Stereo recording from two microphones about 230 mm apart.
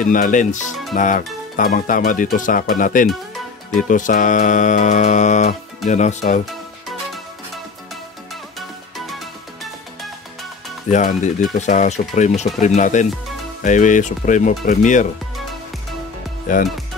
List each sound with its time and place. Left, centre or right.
0.0 s music: left
6.9 s music: centre
10.9 s music: left
16.5 s music: left